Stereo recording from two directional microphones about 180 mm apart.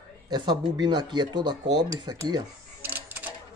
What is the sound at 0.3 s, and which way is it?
Speech, 25° right (ahead or behind).